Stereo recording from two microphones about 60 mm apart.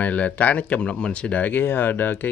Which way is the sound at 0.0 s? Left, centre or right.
Left.